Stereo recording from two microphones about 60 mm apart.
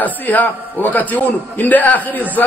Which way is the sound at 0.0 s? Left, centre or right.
Left.